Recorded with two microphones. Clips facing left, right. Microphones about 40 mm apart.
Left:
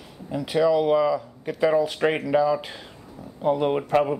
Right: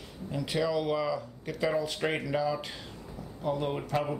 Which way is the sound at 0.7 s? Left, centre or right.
Left.